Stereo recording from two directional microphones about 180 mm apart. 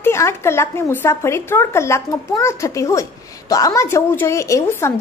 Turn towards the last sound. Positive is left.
turn(degrees=15)  # may be behind; listen again after turning